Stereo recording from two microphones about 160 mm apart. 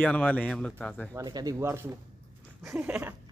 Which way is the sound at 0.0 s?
10° left (ahead or behind).